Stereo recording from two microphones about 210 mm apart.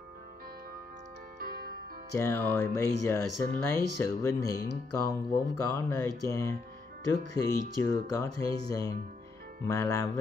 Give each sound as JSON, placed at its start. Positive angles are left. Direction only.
{"t": 1.4, "sound": "music", "side_deg": -45}
{"t": 2.1, "sound": "speech", "side_deg": 10}